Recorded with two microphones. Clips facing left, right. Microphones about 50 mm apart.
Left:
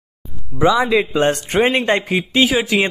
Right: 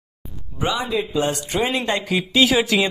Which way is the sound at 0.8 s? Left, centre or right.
Left.